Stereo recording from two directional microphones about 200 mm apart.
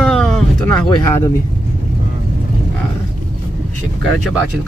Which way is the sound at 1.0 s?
15° left (ahead or behind).